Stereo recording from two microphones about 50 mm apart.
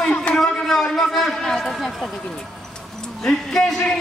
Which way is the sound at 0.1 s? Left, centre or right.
Left.